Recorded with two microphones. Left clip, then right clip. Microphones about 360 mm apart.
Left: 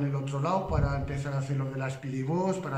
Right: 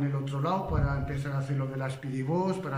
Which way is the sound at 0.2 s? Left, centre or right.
Centre.